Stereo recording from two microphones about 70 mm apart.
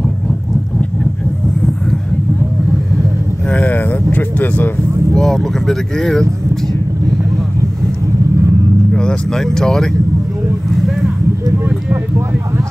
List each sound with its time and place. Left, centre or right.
3.4 s vehicle: left
5.1 s speech: centre
8.9 s speech: centre